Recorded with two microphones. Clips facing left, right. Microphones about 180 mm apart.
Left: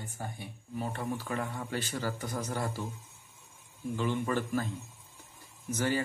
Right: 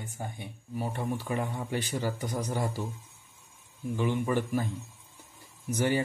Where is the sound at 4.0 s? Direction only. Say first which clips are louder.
Right 3 dB; 15° right (ahead or behind).